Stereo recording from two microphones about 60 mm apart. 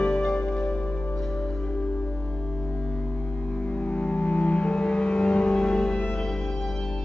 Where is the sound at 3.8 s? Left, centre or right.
Centre.